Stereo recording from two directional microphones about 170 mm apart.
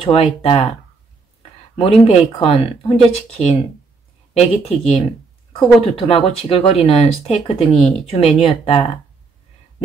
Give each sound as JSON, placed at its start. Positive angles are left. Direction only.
{"t": 0.0, "sound": "speech", "side_deg": 35}
{"t": 1.8, "sound": "speech", "side_deg": 35}